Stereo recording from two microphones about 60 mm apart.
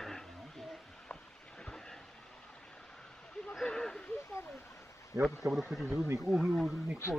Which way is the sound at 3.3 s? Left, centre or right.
Centre.